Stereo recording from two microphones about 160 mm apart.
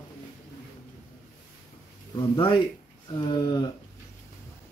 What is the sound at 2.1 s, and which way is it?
Speech, 30° left (ahead or behind).